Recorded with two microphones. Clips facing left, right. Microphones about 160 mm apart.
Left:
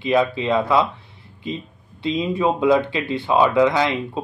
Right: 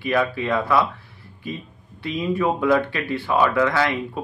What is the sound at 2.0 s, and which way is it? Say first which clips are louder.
Speech: left 2 dB; 20° left (ahead or behind).